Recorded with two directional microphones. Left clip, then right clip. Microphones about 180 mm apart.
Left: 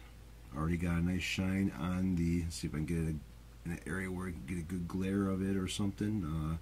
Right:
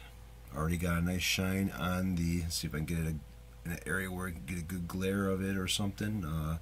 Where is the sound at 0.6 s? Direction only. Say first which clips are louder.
Right 3 dB; 30° right (ahead or behind).